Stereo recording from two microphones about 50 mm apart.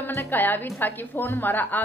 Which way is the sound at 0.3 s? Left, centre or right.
Left.